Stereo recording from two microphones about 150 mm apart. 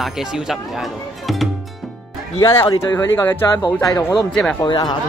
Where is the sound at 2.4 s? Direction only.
20° left (ahead or behind).